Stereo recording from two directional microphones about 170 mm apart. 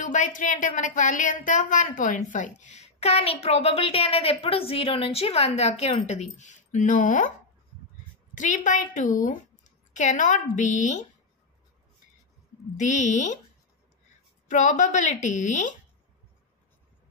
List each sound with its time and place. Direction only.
0.0 s a woman's voice: 50° left (ahead or behind)
8.4 s a woman's voice: 45° left (ahead or behind)
12.7 s a woman's voice: 45° left (ahead or behind)
14.5 s a woman's voice: 50° left (ahead or behind)